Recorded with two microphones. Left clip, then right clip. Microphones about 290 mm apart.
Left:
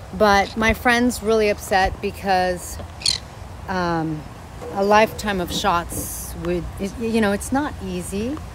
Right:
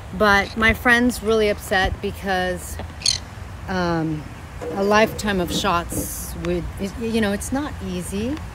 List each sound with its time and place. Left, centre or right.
0.2 s speech: centre
3.0 s a sound: centre
3.6 s speech: centre